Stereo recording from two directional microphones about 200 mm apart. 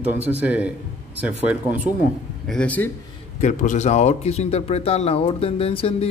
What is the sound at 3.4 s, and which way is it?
Speech, 40° left (ahead or behind).